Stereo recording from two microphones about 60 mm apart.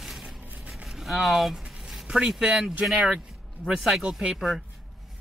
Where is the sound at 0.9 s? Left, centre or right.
Centre.